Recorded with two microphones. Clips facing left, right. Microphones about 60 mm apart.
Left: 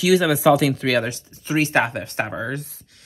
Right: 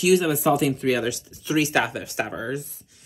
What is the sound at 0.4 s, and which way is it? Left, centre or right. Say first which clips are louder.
Speech: left 4 dB; left.